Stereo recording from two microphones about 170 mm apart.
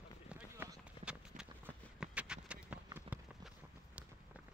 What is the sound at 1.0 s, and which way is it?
Clip-clop, 5° right (ahead or behind).